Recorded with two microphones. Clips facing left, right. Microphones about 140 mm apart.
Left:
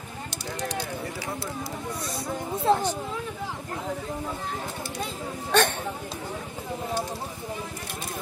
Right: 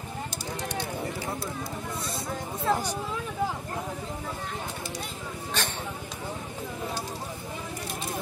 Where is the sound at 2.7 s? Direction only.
30° left (ahead or behind).